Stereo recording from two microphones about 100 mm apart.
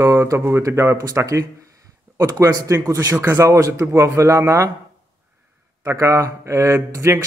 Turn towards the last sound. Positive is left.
turn(degrees=-30)  # may be behind; listen again after turning